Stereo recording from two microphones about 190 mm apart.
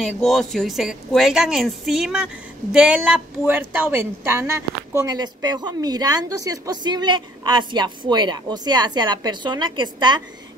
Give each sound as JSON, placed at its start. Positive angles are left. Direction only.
{"t": 0.0, "sound": "a woman's voice", "side_deg": 0}